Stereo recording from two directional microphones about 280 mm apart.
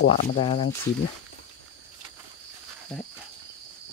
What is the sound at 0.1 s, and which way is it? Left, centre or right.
Speech, centre.